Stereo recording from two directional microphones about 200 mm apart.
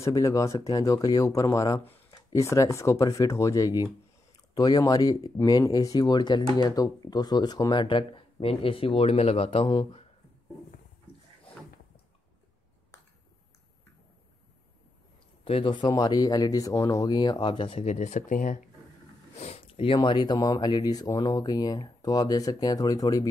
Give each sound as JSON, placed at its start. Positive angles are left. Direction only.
{"t": 0.0, "sound": "speech", "side_deg": 15}
{"t": 15.4, "sound": "speech", "side_deg": 25}